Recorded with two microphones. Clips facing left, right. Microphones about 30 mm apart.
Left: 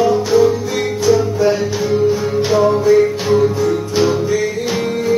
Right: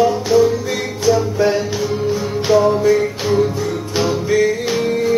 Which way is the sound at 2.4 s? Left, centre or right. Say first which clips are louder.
Right 1 dB; centre.